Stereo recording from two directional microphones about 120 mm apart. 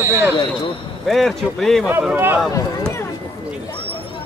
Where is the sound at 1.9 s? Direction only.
20° right (ahead or behind).